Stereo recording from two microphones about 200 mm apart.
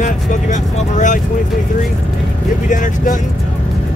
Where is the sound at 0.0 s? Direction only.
40° left (ahead or behind).